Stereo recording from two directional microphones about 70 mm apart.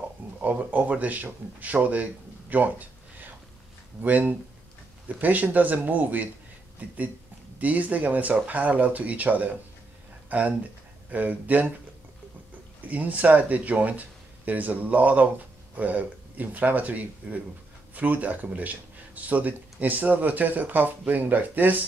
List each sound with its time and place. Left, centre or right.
0.4 s speech: right
2.5 s a sound: right
4.0 s speech: right
12.8 s speech: right